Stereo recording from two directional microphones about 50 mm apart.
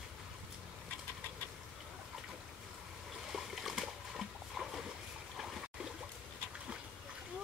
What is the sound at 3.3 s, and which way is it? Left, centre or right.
Dog, centre.